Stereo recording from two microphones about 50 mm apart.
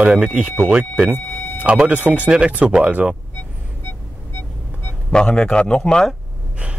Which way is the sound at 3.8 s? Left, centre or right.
Left.